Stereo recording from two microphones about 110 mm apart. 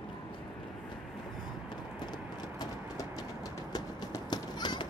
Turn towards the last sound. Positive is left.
turn(degrees=40)  # may be behind; listen again after turning